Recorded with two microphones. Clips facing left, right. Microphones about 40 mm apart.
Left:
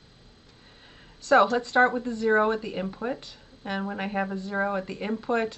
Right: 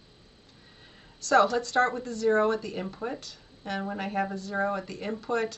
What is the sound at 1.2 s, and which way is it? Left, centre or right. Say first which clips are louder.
A woman's voice: left 2 dB; centre.